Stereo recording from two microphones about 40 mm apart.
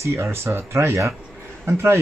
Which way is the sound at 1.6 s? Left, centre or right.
Right.